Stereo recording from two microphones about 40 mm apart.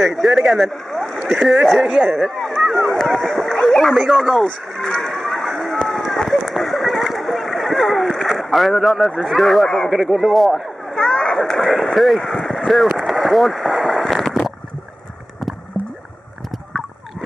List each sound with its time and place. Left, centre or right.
0.0 s speech: centre
0.5 s rowboat: centre
1.3 s speech: centre
2.1 s speech: centre
2.6 s run: centre
3.0 s speech: centre
3.5 s a sound: centre
5.9 s run: centre
6.6 s a sound: centre
8.3 s speech: centre
10.2 s speech: centre
11.1 s a sound: centre
11.5 s speech: centre
13.0 s a sound: centre